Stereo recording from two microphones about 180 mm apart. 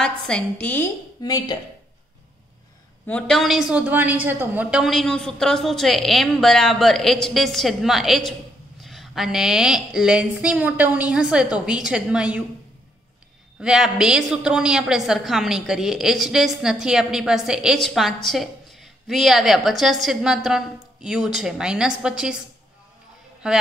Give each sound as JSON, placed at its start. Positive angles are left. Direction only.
{"t": 0.0, "sound": "a woman's voice", "side_deg": 5}
{"t": 1.2, "sound": "speech", "side_deg": 20}
{"t": 3.1, "sound": "a woman's voice", "side_deg": 5}
{"t": 13.6, "sound": "a woman's voice", "side_deg": -5}
{"t": 23.4, "sound": "a woman's voice", "side_deg": -5}